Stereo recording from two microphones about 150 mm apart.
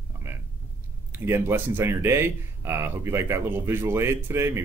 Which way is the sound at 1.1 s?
15° right (ahead or behind).